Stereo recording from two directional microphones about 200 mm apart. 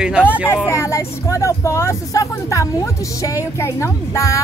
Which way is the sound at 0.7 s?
15° left (ahead or behind).